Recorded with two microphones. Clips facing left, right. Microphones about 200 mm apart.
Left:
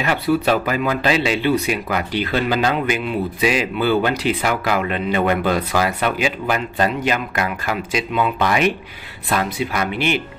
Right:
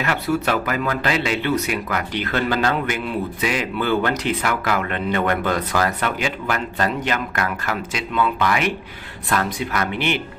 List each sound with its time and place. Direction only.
0.0 s speech: 20° left (ahead or behind)
8.4 s speech: 25° left (ahead or behind)